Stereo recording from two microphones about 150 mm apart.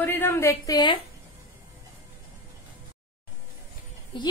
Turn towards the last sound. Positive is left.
turn(degrees=35)  # may be behind; listen again after turning